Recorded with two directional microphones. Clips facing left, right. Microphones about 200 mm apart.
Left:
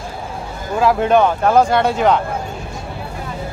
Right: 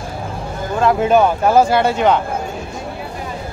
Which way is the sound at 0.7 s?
Centre (ahead or behind).